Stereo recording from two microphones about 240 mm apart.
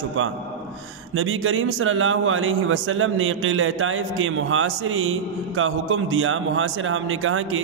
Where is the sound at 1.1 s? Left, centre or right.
Right.